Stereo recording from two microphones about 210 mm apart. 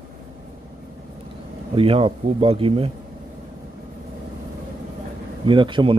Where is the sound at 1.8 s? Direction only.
25° right (ahead or behind).